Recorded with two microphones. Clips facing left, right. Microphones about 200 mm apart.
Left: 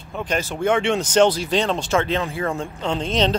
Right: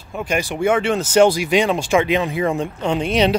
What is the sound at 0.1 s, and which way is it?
Speech, 10° right (ahead or behind).